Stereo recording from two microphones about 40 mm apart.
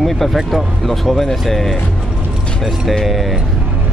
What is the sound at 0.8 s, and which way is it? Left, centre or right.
Speech, centre.